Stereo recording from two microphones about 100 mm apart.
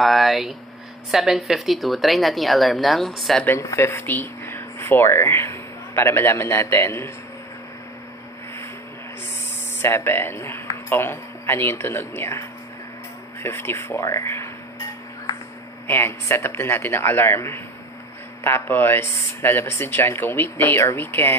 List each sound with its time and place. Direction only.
0.0 s speech: centre (ahead or behind)
3.4 s speech: 25° left (ahead or behind)
9.8 s speech: 25° left (ahead or behind)
15.9 s speech: 25° left (ahead or behind)